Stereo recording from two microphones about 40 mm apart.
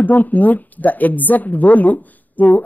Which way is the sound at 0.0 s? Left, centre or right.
Left.